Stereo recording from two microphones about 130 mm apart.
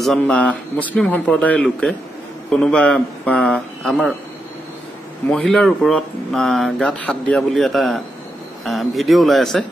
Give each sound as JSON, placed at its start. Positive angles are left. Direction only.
{"t": 0.0, "sound": "speech", "side_deg": 5}
{"t": 5.3, "sound": "speech", "side_deg": 5}